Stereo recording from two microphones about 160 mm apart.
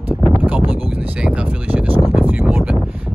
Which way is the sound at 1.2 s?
5° right (ahead or behind).